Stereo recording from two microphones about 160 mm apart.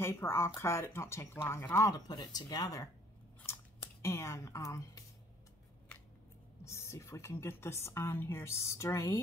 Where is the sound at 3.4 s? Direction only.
15° left (ahead or behind).